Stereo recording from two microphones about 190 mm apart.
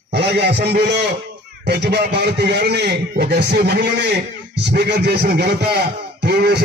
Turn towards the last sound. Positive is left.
turn(degrees=-60)  # may be behind; listen again after turning